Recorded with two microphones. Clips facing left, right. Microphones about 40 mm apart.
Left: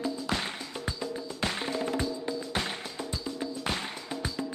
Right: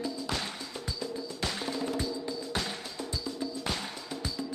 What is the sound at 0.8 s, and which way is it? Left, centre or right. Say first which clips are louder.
Music: left 2 dB; left.